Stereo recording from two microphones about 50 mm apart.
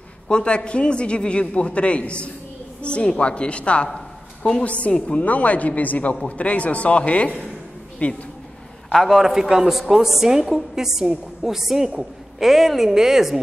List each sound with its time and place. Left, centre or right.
0.3 s a man's voice: centre
8.8 s a sound: centre
9.1 s a woman's voice: centre